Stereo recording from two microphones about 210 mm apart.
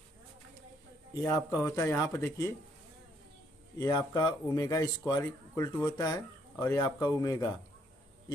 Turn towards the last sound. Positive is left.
turn(degrees=15)  # may be behind; listen again after turning